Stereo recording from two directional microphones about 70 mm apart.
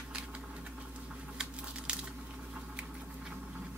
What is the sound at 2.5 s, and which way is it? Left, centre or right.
Patter, centre.